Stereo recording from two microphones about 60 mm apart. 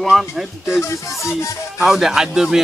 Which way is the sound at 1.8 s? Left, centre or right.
Centre.